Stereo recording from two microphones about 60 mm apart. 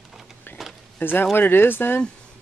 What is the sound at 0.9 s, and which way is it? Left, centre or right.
Speech, left.